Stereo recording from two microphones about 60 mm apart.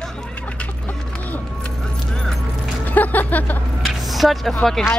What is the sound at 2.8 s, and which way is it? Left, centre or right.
Speech, left.